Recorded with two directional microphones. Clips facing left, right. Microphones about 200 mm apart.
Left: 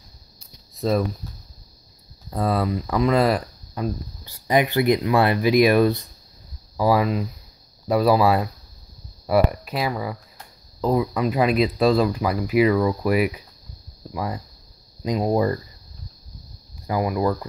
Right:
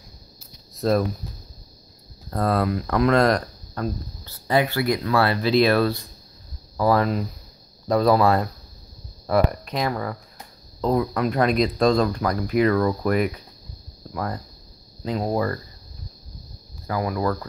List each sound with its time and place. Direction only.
0.4 s a sound: centre (ahead or behind)
2.3 s speech: centre (ahead or behind); by 15.6 s 20° left (ahead or behind)
16.8 s speech: 15° left (ahead or behind)